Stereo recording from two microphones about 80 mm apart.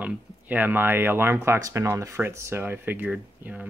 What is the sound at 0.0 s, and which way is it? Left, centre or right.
A man's voice, right.